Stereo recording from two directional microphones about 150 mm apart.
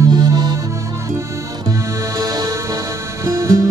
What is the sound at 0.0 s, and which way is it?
Music, 25° right (ahead or behind).